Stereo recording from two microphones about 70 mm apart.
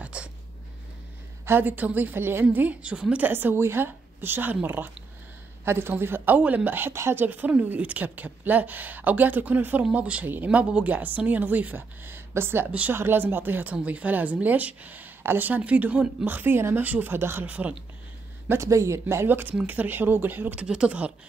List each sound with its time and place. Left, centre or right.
0.0 s a sound: centre
1.4 s a woman's voice: right
7.2 s a woman's voice: right
17.5 s speech: right
18.5 s a woman's voice: right
20.6 s speech: centre